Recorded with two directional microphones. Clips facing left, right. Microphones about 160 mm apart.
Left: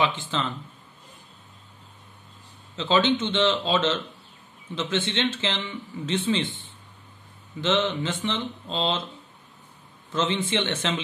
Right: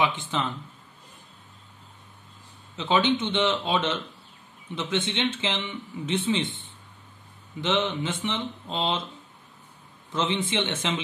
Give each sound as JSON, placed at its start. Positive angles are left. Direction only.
{"t": 0.0, "sound": "speech", "side_deg": -15}
{"t": 2.7, "sound": "speech", "side_deg": -15}
{"t": 7.6, "sound": "speech", "side_deg": -15}
{"t": 10.1, "sound": "speech", "side_deg": -15}